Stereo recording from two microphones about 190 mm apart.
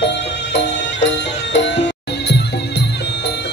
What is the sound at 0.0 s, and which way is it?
Music, 65° left (ahead or behind).